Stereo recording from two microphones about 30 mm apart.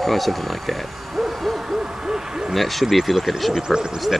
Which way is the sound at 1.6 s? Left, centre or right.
Right.